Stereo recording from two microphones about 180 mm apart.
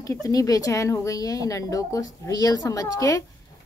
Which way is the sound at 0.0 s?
20° left (ahead or behind).